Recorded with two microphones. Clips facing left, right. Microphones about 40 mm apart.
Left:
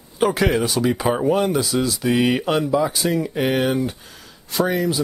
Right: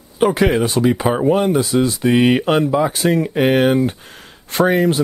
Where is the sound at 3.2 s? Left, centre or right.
Right.